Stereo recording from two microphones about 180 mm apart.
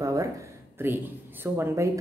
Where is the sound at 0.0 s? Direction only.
20° right (ahead or behind).